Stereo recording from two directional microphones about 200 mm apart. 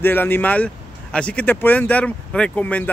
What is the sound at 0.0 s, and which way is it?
Speech, 10° left (ahead or behind).